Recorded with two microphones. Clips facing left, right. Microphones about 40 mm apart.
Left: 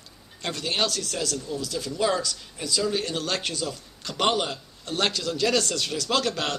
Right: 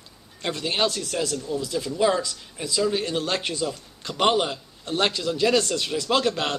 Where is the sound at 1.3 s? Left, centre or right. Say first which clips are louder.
Right 3 dB; centre.